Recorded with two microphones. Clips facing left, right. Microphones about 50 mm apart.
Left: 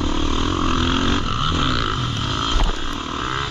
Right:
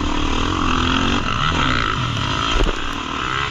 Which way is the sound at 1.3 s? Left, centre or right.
Right.